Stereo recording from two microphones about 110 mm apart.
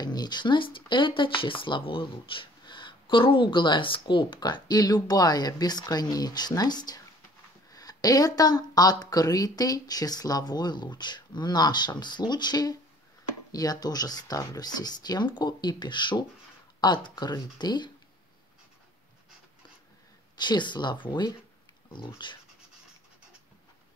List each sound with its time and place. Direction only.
0.0 s speech: 40° left (ahead or behind)
20.3 s speech: 45° left (ahead or behind)